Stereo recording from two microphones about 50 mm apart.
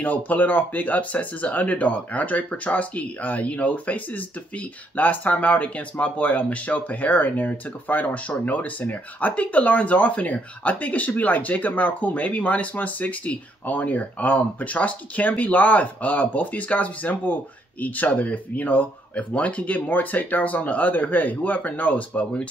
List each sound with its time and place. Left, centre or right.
0.0 s speech: left